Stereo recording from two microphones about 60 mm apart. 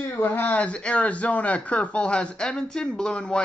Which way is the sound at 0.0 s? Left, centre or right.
Left.